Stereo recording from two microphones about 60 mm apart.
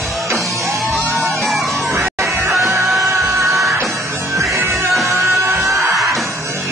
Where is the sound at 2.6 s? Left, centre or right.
Centre.